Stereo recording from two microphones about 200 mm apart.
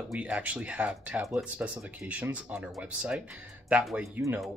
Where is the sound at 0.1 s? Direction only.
5° right (ahead or behind).